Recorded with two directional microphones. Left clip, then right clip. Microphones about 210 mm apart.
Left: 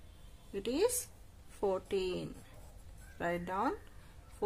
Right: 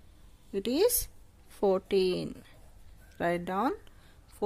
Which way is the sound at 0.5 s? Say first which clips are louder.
Right 6 dB; 40° right (ahead or behind).